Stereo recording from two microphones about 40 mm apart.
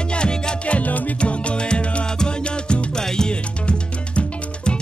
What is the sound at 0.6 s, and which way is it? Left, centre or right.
Music, left.